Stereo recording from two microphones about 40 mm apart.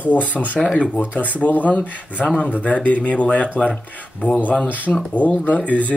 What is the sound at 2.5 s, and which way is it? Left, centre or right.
Speech, left.